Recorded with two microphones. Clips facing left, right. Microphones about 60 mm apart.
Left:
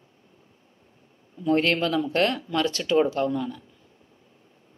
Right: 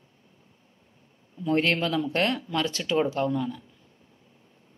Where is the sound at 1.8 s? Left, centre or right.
Left.